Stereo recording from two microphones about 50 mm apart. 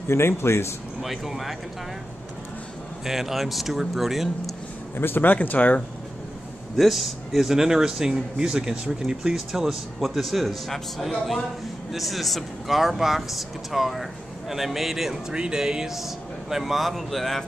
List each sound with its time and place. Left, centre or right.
0.1 s speech: left
1.0 s speech: centre
3.1 s speech: centre
4.9 s speech: left
6.8 s speech: centre
15.3 s speech: centre